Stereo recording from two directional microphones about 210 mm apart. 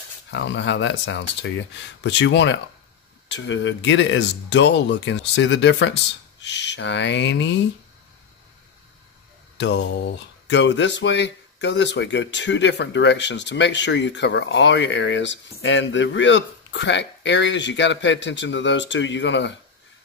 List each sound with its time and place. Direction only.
0.3 s speech: 60° left (ahead or behind)
9.6 s speech: 55° left (ahead or behind)